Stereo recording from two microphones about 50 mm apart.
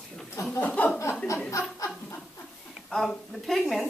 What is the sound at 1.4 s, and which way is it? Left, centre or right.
Chuckle, left.